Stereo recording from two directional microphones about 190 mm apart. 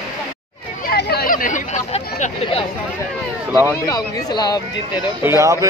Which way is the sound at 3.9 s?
20° left (ahead or behind).